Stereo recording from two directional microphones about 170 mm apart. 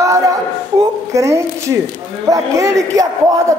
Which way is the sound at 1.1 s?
15° right (ahead or behind).